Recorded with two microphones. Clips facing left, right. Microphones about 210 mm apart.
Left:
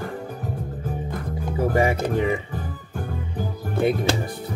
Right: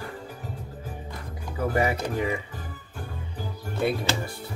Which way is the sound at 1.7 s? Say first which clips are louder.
Left 4 dB; 25° left (ahead or behind).